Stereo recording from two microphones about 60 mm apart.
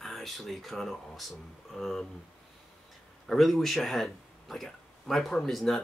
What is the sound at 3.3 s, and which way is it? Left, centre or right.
Speech, centre.